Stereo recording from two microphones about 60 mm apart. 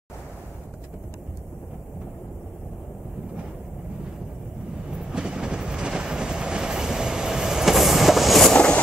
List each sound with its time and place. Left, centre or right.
5.1 s train: centre
8.5 s vehicle: centre